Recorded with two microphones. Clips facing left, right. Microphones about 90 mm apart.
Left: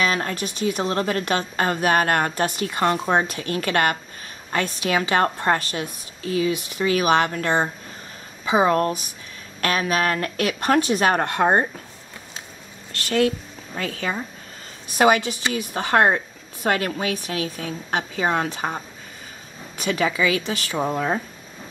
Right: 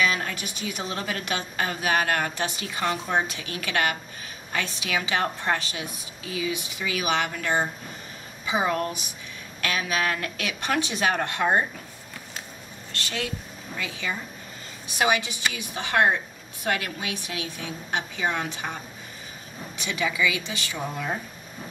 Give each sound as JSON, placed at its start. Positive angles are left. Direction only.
{"t": 0.0, "sound": "a woman's voice", "side_deg": 40}
{"t": 13.7, "sound": "a woman's voice", "side_deg": 45}
{"t": 19.8, "sound": "a woman's voice", "side_deg": 45}